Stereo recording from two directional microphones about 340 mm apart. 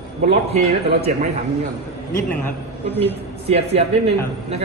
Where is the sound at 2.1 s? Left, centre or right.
Centre.